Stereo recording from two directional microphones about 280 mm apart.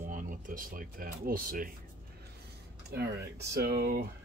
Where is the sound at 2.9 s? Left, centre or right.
Right.